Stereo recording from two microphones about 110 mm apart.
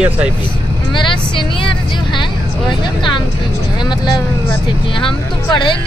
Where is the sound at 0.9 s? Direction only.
50° left (ahead or behind).